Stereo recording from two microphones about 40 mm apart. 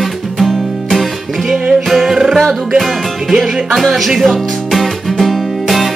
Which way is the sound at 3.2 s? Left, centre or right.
Centre.